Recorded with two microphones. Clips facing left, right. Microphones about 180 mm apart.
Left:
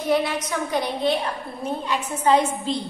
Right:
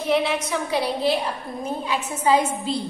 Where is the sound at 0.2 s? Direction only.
5° right (ahead or behind).